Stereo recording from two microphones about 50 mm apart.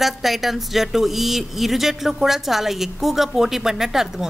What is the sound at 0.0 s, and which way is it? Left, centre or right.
A woman's voice, centre.